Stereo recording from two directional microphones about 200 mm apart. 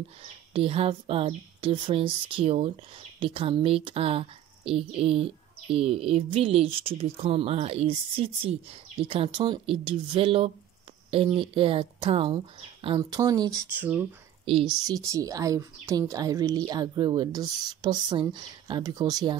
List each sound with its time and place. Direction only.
0.2 s speech: 30° right (ahead or behind); by 14.0 s 10° right (ahead or behind)
14.4 s speech: 25° right (ahead or behind)